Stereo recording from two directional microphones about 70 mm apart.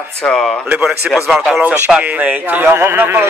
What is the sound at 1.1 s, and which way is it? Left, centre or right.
Speech, centre.